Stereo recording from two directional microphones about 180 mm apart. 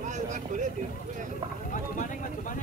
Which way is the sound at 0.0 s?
45° right (ahead or behind).